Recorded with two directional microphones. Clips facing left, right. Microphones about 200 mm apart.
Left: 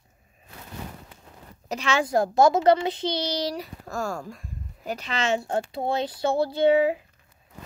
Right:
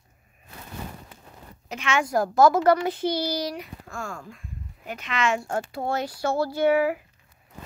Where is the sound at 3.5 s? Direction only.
35° left (ahead or behind).